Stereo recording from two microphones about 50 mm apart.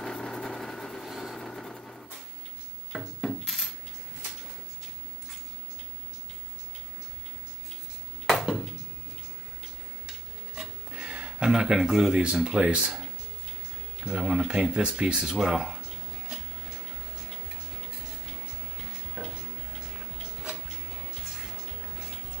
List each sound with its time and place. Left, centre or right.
0.0 s vehicle: centre
2.9 s wood: centre
8.3 s a sound: centre
10.5 s a sound: centre
12.1 s speech: centre
14.0 s speech: centre
18.8 s sizzle: centre
20.6 s music: centre